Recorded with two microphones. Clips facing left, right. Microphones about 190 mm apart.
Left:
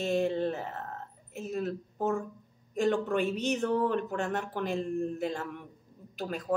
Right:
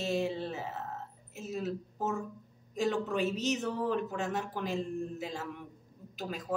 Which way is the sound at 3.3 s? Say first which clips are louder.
Left 4 dB; 55° left (ahead or behind).